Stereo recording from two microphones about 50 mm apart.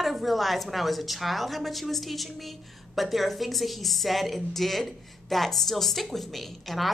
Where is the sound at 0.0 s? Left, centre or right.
Centre.